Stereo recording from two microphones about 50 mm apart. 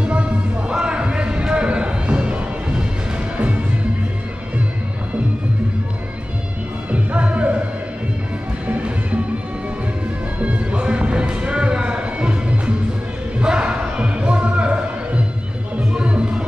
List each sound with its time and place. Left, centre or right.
0.0 s music: right
6.9 s music: right
8.6 s music: right
10.4 s music: right